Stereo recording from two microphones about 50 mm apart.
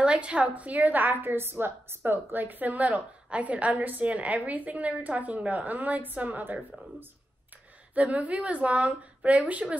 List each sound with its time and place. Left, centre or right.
0.0 s a woman's voice: right
7.9 s a woman's voice: right